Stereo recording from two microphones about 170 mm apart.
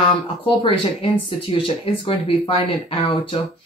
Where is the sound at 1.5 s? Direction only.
30° left (ahead or behind).